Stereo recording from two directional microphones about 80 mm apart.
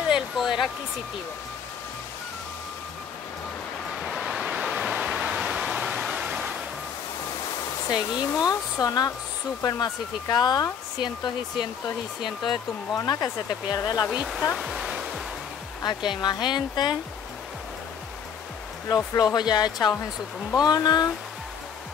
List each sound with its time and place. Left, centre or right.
0.1 s a sound: centre
4.0 s a sound: centre
7.2 s waterfall: left
8.0 s speech: left
12.9 s speech: left
14.3 s music: centre
15.8 s speech: left
19.3 s speech: left